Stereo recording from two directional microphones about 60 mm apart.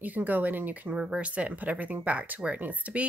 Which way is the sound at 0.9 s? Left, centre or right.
Centre.